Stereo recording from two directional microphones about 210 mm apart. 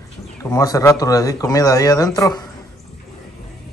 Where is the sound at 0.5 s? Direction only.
15° left (ahead or behind).